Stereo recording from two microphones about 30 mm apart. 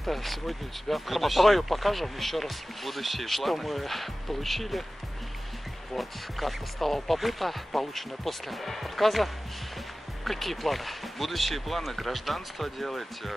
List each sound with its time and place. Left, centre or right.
0.0 s speech: centre
5.9 s speech: centre